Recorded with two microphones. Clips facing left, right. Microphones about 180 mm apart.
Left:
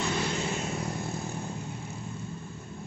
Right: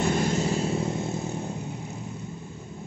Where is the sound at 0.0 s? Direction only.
45° right (ahead or behind); by 1.2 s 25° right (ahead or behind).